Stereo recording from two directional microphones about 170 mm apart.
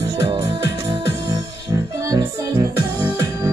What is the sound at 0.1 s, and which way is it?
Music, 35° right (ahead or behind).